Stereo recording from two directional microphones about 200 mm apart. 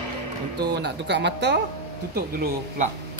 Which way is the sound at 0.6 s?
55° right (ahead or behind).